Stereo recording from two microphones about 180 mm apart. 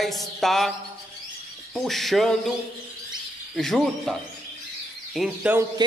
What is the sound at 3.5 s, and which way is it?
A man's voice, centre (ahead or behind).